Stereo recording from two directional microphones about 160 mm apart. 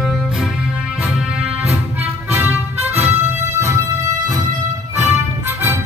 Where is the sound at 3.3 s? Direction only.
45° right (ahead or behind).